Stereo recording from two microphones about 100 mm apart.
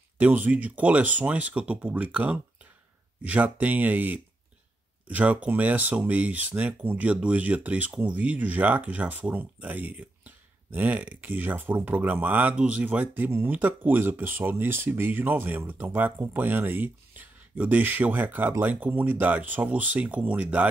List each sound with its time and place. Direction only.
0.2 s speech: 15° right (ahead or behind)